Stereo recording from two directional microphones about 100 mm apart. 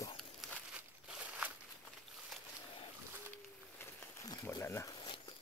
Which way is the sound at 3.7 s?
25° left (ahead or behind).